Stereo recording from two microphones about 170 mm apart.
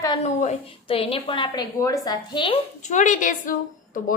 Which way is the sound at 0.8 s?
35° left (ahead or behind).